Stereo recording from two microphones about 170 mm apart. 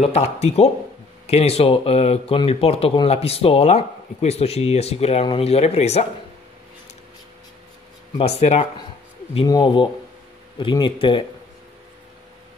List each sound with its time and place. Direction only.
0.0 s speech: 40° left (ahead or behind)
8.2 s speech: 35° left (ahead or behind)
9.5 s speech: 25° left (ahead or behind)